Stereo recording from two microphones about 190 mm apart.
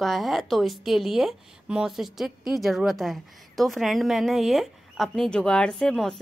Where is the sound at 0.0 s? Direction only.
Centre (ahead or behind).